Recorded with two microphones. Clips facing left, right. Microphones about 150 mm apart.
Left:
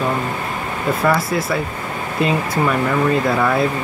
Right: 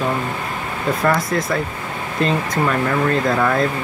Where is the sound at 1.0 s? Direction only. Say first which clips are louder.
Left 1 dB; 5° left (ahead or behind).